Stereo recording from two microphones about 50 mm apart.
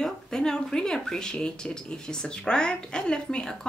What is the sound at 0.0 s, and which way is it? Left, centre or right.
Speech, centre.